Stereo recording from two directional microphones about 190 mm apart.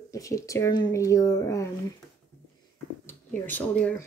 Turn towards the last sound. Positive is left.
turn(degrees=10)  # may be behind; listen again after turning